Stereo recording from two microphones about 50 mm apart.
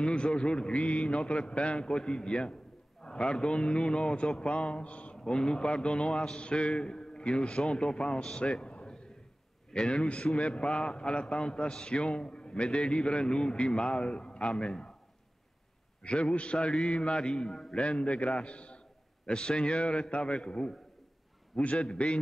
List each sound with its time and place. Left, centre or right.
0.0 s a man's voice: left
5.1 s a man's voice: centre
16.0 s a man's voice: left